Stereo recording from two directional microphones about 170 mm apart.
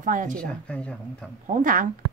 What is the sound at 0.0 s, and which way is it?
Speech, 50° right (ahead or behind).